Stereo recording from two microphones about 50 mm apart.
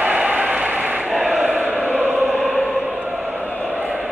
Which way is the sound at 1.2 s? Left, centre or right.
Right.